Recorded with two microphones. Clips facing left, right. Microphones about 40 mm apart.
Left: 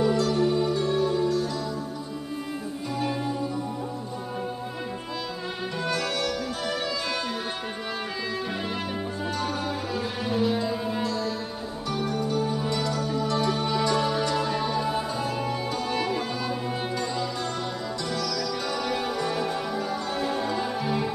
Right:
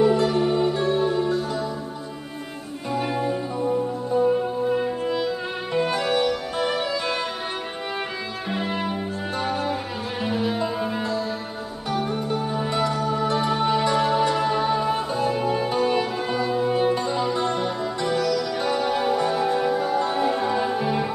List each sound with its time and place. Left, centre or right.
0.0 s music: right
3.0 s music: right
4.7 s music: right
8.5 s music: right
20.8 s music: right